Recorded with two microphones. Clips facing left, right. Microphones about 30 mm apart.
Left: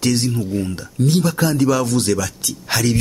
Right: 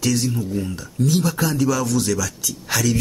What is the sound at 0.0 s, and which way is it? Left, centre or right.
A man's voice, left.